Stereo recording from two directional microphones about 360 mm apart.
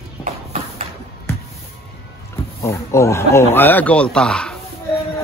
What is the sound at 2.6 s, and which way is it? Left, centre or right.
Speech, centre.